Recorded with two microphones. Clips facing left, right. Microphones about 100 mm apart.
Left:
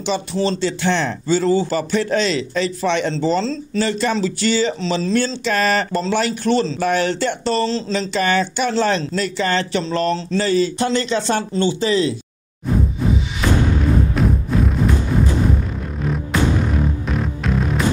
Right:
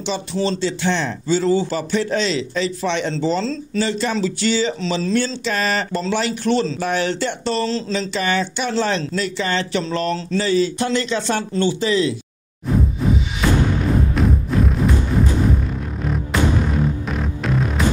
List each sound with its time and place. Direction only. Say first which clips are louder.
0.0 s speech: left 2 dB; 50° left (ahead or behind); by 12.2 s 30° left (ahead or behind)
12.7 s whoosh: even; centre (ahead or behind)
13.4 s music: even; centre (ahead or behind)
16.0 s music: left 1 dB; centre (ahead or behind)